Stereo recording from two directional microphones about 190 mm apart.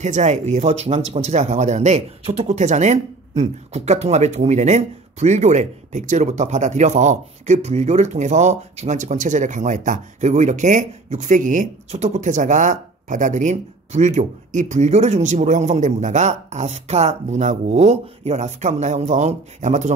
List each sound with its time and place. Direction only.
0.0 s speech: 35° right (ahead or behind)